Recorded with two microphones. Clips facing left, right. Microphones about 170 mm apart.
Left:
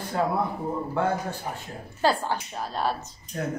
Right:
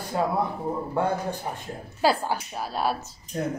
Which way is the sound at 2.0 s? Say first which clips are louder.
Right 1 dB; 10° right (ahead or behind).